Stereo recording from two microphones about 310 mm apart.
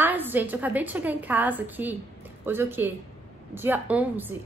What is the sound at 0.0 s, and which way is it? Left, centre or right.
A woman's voice, centre.